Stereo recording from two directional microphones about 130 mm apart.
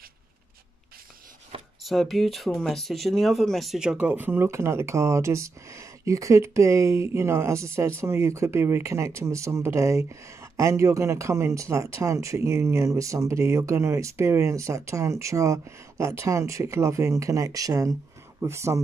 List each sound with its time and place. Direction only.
1.8 s speech: centre (ahead or behind); by 18.8 s 20° right (ahead or behind)